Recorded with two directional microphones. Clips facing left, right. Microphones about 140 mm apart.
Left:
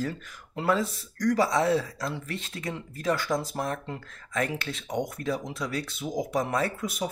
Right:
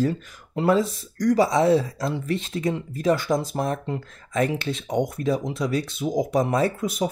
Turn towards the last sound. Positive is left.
turn(degrees=-25)  # may be behind; listen again after turning